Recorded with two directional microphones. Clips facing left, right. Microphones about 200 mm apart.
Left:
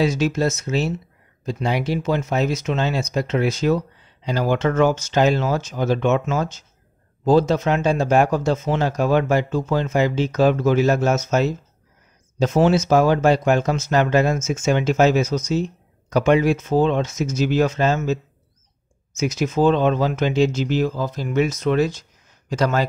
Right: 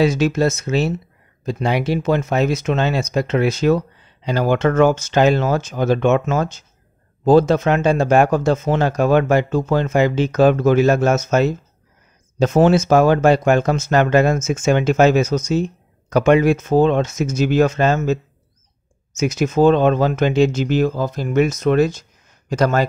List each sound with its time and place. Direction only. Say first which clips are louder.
0.0 s speech: right 3 dB; 60° right (ahead or behind)